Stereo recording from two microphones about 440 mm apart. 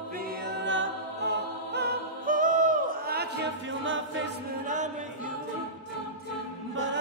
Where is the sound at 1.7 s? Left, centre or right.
Centre.